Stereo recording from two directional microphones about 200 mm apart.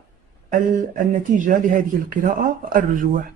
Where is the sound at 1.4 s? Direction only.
40° right (ahead or behind).